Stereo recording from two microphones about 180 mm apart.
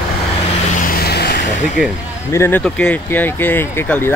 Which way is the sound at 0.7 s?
55° left (ahead or behind).